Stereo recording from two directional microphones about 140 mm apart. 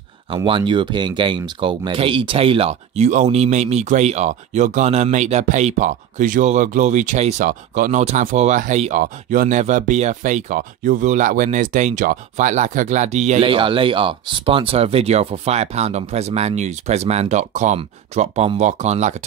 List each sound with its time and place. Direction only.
0.5 s speech: 35° right (ahead or behind); by 7.4 s 60° right (ahead or behind)
7.4 s speech: 70° right (ahead or behind)
9.0 s speech: 75° right (ahead or behind); by 13.4 s 55° right (ahead or behind)
13.4 s speech: 40° right (ahead or behind); by 19.1 s 55° right (ahead or behind)